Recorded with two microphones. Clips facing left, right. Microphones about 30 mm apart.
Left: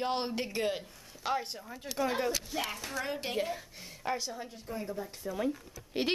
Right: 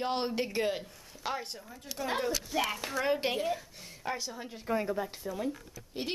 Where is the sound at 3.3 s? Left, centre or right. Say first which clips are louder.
Right 1 dB; centre.